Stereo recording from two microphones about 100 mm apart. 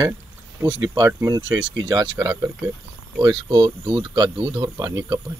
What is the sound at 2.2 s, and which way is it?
Speech, 30° right (ahead or behind).